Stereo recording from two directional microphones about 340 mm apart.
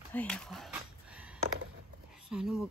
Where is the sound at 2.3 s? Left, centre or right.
Centre.